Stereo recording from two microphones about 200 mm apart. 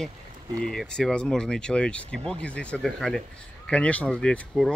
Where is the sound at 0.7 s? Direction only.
Centre (ahead or behind).